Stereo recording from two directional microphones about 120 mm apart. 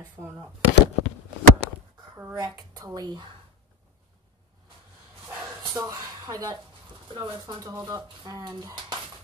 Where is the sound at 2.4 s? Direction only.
35° right (ahead or behind).